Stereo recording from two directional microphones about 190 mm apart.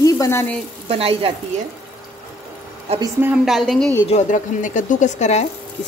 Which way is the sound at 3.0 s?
10° right (ahead or behind).